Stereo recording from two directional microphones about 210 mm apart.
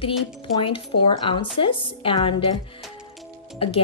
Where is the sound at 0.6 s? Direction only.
25° left (ahead or behind).